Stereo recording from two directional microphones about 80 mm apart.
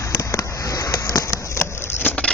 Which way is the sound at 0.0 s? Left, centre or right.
Left.